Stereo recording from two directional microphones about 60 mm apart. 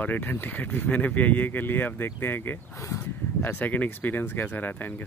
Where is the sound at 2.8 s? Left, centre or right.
Left.